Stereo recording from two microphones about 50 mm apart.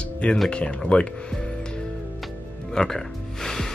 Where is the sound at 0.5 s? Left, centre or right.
Left.